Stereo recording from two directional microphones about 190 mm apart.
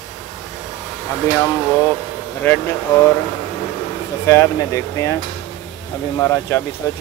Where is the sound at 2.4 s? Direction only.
10° left (ahead or behind).